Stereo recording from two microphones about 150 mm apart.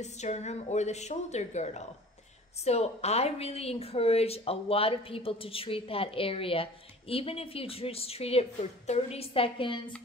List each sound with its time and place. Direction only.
0.0 s a woman's voice: 50° left (ahead or behind); by 9.8 s 35° left (ahead or behind)